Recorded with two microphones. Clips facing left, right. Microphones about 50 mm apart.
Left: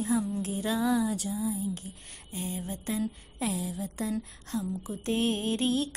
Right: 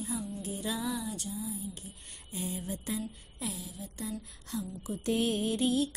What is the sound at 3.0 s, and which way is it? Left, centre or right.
Speech, left.